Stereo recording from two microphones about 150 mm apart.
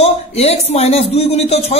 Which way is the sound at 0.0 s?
45° left (ahead or behind).